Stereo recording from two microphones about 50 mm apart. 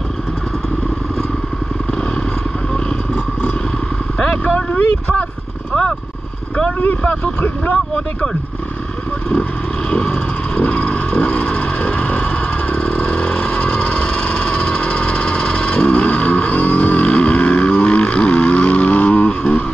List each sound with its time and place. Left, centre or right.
4.2 s vehicle: left
9.8 s vehicle: centre